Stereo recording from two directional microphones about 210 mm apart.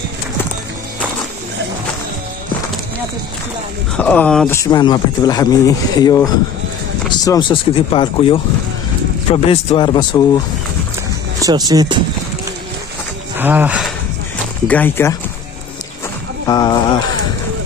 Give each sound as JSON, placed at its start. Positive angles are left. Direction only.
{"t": 3.9, "sound": "speech", "side_deg": 5}
{"t": 4.6, "sound": "speech", "side_deg": 15}
{"t": 11.4, "sound": "speech", "side_deg": -20}
{"t": 13.4, "sound": "speech", "side_deg": -10}
{"t": 14.7, "sound": "speech", "side_deg": 10}
{"t": 16.4, "sound": "speech", "side_deg": 20}